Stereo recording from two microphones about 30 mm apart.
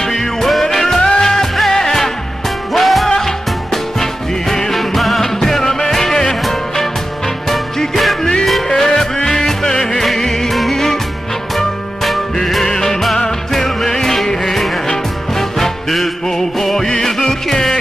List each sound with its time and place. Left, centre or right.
0.2 s music: centre
2.7 s music: centre
3.1 s music: centre
5.2 s music: centre
7.4 s music: centre
8.6 s music: centre
11.5 s music: centre
12.6 s music: centre